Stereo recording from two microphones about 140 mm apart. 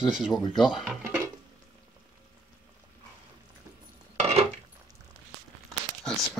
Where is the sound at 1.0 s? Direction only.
15° right (ahead or behind).